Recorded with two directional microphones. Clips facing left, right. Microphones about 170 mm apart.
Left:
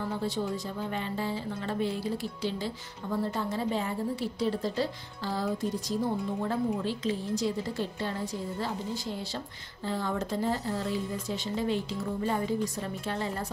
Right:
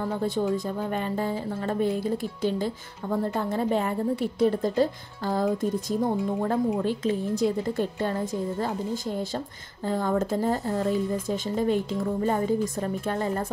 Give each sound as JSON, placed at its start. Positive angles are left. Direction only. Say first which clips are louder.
{"t": 0.2, "sound": "speech", "louder": "right 6 dB", "side_deg": -50}